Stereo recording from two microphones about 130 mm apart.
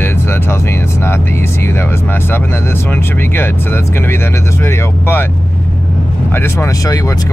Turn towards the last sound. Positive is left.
turn(degrees=25)  # may be behind; listen again after turning